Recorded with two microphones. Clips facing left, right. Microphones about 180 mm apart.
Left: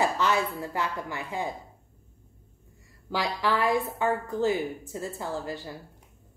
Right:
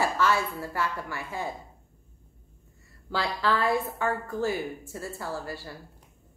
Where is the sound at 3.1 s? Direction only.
15° left (ahead or behind).